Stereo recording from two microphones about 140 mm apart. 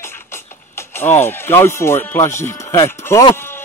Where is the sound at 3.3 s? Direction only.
15° left (ahead or behind).